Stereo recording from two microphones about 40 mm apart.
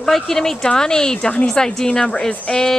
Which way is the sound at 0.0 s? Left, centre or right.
Centre.